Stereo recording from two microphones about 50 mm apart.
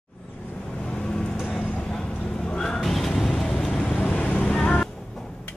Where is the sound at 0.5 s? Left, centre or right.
Left.